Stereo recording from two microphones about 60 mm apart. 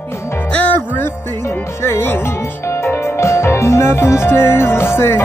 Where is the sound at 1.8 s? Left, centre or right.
Left.